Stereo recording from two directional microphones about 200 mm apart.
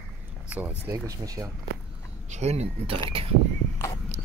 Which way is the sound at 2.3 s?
35° right (ahead or behind).